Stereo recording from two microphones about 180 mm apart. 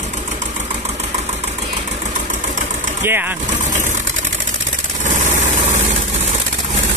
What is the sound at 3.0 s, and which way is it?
Speech, 10° right (ahead or behind).